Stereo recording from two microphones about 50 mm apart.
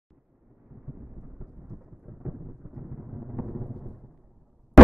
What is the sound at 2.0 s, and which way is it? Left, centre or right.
Thunder, centre.